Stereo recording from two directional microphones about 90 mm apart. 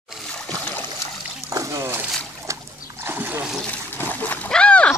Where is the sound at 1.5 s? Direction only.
35° right (ahead or behind).